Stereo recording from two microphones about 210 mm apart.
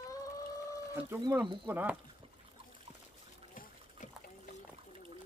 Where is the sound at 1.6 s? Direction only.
5° right (ahead or behind).